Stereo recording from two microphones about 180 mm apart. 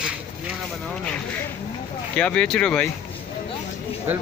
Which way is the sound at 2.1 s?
5° left (ahead or behind).